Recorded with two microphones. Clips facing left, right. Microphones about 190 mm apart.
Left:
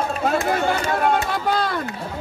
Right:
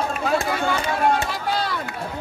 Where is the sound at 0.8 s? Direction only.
50° left (ahead or behind).